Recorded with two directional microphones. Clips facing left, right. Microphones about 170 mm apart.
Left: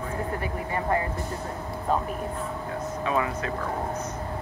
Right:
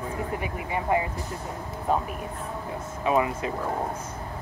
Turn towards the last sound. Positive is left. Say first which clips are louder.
# right 2 dB
turn(degrees=-20)  # may be behind; listen again after turning